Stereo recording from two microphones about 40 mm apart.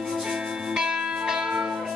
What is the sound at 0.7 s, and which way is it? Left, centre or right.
Music, centre.